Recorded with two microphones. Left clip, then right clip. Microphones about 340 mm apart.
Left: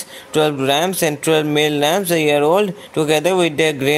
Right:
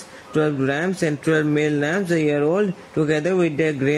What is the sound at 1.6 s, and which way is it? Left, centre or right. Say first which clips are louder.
Speech: left 5 dB; left.